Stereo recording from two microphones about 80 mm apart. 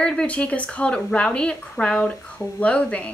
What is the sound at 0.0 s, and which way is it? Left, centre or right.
Speech, centre.